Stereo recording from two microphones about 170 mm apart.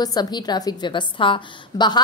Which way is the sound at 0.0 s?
25° left (ahead or behind).